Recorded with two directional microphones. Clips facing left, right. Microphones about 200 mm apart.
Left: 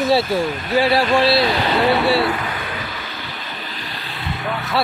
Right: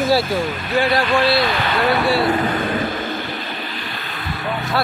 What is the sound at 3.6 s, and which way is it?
Vehicle, 40° left (ahead or behind).